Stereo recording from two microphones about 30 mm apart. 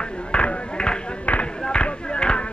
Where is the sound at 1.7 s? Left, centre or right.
Left.